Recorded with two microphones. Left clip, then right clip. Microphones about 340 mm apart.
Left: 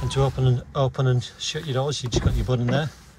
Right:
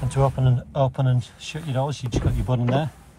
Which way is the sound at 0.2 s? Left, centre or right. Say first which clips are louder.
Right 2 dB; centre.